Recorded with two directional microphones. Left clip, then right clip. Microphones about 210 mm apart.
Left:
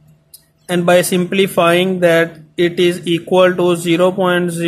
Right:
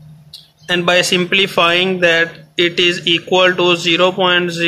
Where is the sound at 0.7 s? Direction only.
25° left (ahead or behind).